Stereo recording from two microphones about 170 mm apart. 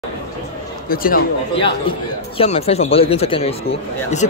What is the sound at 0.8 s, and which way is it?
Speech, 60° left (ahead or behind).